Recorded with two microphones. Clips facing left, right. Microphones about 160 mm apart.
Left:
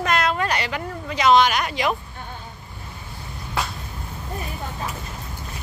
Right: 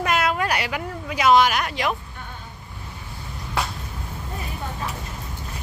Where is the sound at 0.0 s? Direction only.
10° right (ahead or behind).